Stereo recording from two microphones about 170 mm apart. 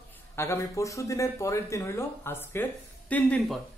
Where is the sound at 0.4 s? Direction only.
15° left (ahead or behind).